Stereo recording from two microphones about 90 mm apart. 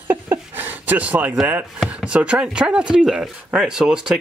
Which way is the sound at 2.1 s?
15° right (ahead or behind).